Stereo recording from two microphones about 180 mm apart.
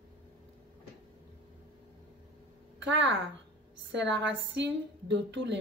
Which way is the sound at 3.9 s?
80° right.